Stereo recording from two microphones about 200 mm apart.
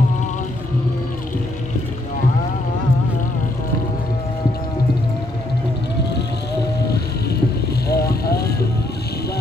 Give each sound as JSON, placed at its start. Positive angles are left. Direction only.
{"t": 7.9, "sound": "vehicle", "side_deg": 50}